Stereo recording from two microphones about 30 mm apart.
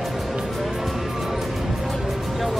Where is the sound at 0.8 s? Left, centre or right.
Centre.